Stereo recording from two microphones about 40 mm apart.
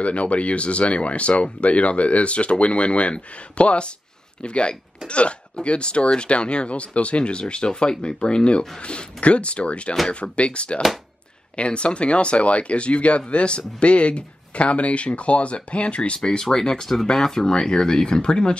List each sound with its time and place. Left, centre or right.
0.0 s speech: left
16.3 s speech: centre